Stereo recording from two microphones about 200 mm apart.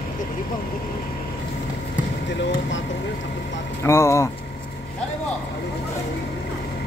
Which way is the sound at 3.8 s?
15° left (ahead or behind).